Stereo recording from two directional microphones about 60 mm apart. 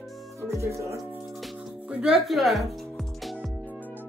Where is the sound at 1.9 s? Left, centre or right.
Centre.